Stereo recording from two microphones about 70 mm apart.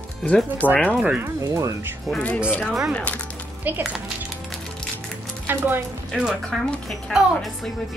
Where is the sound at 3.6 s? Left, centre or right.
Right.